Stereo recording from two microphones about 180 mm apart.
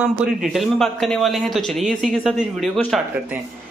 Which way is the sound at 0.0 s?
5° right (ahead or behind).